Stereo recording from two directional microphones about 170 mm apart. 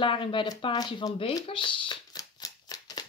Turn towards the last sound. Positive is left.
turn(degrees=20)  # may be behind; listen again after turning